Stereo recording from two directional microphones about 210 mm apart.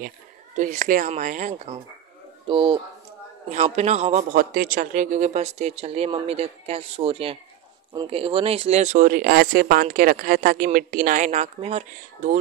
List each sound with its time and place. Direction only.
0.6 s speech: 35° right (ahead or behind)
2.4 s speech: 25° right (ahead or behind)